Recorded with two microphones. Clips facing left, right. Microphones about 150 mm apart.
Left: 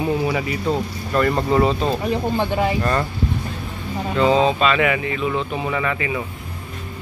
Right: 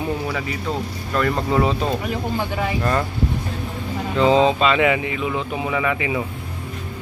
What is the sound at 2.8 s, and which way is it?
Speech, 5° right (ahead or behind).